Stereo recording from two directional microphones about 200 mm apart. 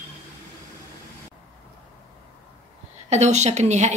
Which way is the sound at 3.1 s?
35° right (ahead or behind).